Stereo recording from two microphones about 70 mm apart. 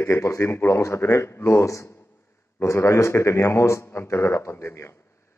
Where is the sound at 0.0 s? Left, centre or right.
Left.